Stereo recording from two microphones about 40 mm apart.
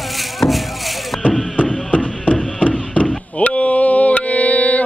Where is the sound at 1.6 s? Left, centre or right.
Left.